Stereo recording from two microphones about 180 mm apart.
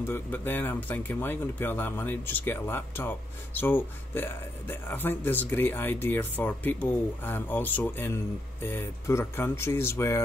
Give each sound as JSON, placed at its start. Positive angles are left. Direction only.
{"t": 0.0, "sound": "speech", "side_deg": 10}